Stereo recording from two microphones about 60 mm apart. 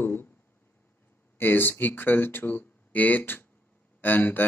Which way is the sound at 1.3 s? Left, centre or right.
Left.